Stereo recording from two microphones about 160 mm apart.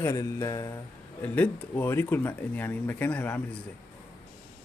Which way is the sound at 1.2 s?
10° left (ahead or behind).